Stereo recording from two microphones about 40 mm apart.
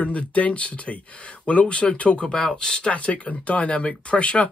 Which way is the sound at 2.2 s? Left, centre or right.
Centre.